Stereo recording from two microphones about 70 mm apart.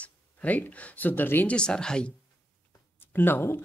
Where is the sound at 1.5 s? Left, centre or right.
Centre.